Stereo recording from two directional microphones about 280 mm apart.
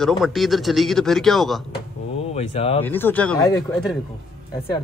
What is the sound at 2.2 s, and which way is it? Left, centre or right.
Speech, left.